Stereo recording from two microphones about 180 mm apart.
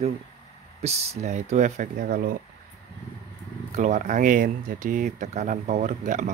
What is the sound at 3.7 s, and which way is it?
Speech, 40° right (ahead or behind).